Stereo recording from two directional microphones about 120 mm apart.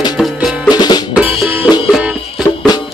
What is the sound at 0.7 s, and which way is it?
Music, 35° left (ahead or behind).